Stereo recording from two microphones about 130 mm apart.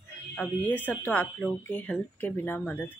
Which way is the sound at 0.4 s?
10° left (ahead or behind).